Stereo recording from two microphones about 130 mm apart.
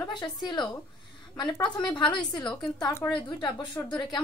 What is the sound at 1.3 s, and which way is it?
A woman's voice, 35° left (ahead or behind).